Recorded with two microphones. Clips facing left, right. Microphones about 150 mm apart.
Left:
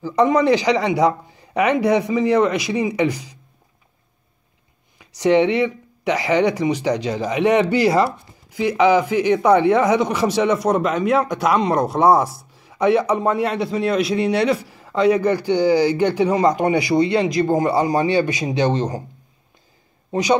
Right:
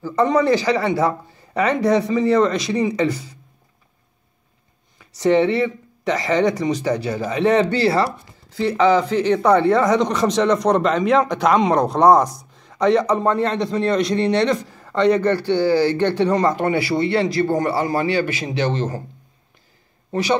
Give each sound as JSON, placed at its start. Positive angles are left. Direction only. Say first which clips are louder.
{"t": 0.0, "sound": "speech", "louder": "left 1 dB", "side_deg": 15}
{"t": 4.9, "sound": "speech", "louder": "left 1 dB", "side_deg": 15}
{"t": 20.1, "sound": "speech", "louder": "left 2 dB", "side_deg": 15}